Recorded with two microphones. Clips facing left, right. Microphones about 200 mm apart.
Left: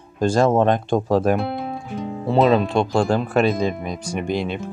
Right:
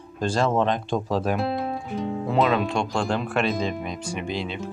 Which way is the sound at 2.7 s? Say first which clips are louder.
Left 6 dB; 35° left (ahead or behind).